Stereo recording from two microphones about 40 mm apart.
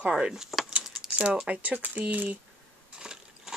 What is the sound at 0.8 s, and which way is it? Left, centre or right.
Keys jangling, centre.